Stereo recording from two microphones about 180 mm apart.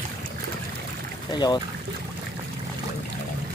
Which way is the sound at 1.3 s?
25° left (ahead or behind).